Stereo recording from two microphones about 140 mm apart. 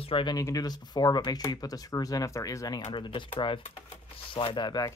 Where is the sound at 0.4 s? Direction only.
25° left (ahead or behind).